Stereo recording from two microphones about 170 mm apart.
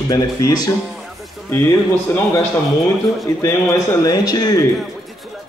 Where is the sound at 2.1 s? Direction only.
15° left (ahead or behind).